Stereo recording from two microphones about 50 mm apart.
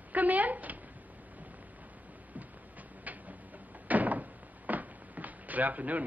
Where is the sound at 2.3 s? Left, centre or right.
Right.